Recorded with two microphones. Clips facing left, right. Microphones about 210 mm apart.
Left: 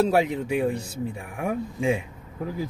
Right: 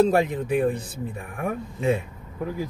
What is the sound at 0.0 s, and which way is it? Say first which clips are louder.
Speech: right 2 dB; 10° left (ahead or behind).